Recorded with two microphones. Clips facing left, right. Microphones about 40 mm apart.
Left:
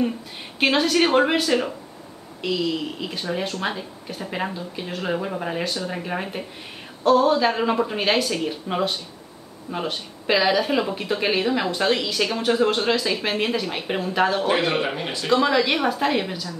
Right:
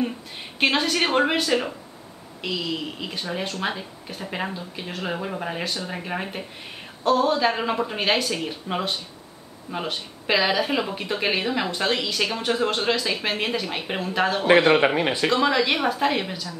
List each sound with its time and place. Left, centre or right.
0.6 s speech: centre
15.0 s speech: right
15.2 s speech: centre